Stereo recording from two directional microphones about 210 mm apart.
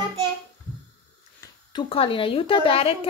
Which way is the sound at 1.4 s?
25° left (ahead or behind).